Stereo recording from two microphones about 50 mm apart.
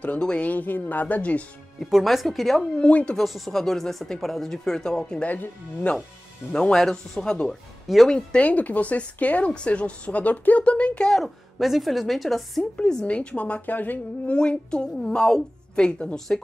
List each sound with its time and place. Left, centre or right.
0.2 s a woman's voice: left
0.6 s speech: left
2.0 s a woman's voice: centre
2.6 s a woman's voice: left
3.2 s speech: centre
5.9 s a woman's voice: left
11.1 s a woman's voice: centre
12.7 s a woman's voice: centre; by 14.3 s left
14.3 s a woman's voice: centre